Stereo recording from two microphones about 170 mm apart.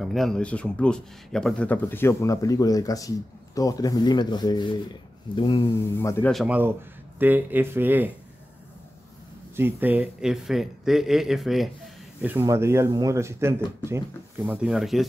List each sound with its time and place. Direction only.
0.0 s speech: centre (ahead or behind); by 5.6 s 30° left (ahead or behind)
5.8 s a man's voice: 15° left (ahead or behind)
6.3 s speech: 10° right (ahead or behind)
9.6 s speech: 10° right (ahead or behind)
12.2 s speech: 10° right (ahead or behind)
14.4 s speech: 5° right (ahead or behind)